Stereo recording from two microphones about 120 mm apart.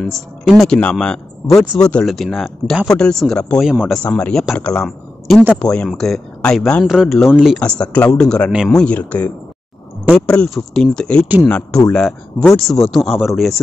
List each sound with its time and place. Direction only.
0.7 s speech: 10° left (ahead or behind)
3.6 s speech: 10° right (ahead or behind)
3.9 s speech: 10° left (ahead or behind)
7.6 s speech: 10° left (ahead or behind)